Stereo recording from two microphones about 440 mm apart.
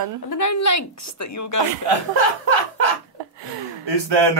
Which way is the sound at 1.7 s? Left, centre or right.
Right.